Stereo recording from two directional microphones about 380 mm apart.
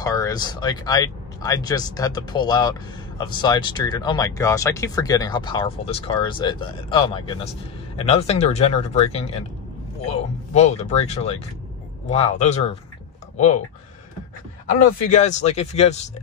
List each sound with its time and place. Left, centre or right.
0.0 s speech: centre
14.7 s speech: centre